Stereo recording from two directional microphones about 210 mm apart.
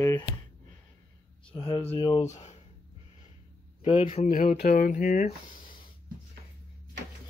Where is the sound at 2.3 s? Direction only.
35° left (ahead or behind).